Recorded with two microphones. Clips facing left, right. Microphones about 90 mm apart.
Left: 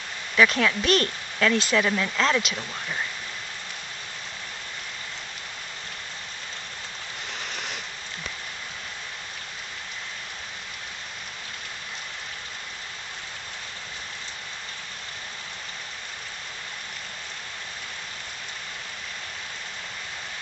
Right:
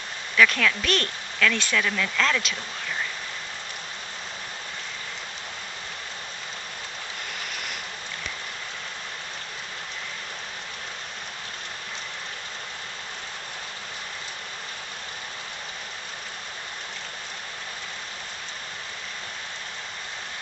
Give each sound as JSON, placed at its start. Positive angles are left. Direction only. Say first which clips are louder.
{"t": 0.4, "sound": "speech", "louder": "even", "side_deg": 20}